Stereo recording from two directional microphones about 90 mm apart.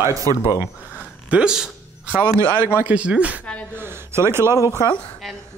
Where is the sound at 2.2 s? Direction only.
20° left (ahead or behind).